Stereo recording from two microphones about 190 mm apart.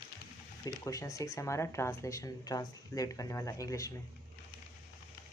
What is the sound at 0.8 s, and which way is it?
Speech, 15° left (ahead or behind).